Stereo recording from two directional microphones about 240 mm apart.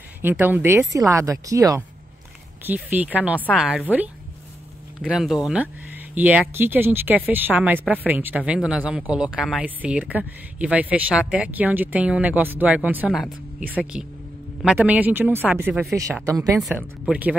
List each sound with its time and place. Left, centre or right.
0.2 s speech: centre
3.3 s speech: centre
5.0 s speech: centre